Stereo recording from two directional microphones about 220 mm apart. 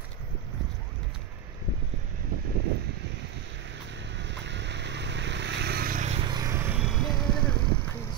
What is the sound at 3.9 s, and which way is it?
Vehicle, 55° right (ahead or behind).